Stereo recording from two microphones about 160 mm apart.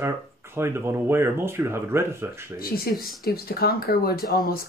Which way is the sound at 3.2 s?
70° left (ahead or behind).